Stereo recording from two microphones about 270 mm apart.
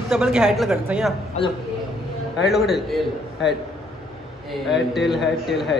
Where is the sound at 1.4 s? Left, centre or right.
Left.